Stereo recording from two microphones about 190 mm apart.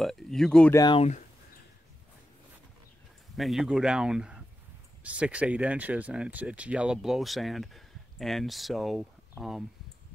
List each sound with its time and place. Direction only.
0.0 s a sound: centre (ahead or behind)
0.7 s speech: 25° left (ahead or behind)
3.3 s speech: centre (ahead or behind)